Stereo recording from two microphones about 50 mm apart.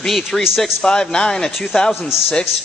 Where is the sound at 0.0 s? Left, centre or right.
Centre.